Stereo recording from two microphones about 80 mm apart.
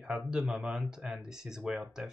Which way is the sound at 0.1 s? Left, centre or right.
Centre.